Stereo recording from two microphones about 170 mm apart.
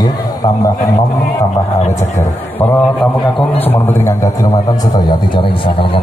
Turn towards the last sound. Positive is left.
turn(degrees=30)  # may be behind; listen again after turning